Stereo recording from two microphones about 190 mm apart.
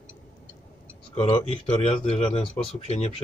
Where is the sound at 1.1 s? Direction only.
30° left (ahead or behind).